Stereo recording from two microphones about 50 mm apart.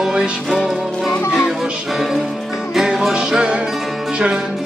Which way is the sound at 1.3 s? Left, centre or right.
Centre.